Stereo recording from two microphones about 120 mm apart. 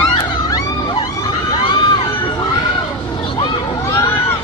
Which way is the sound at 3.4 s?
25° left (ahead or behind).